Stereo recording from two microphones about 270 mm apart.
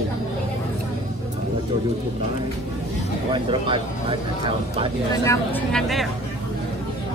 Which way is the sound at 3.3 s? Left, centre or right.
Centre.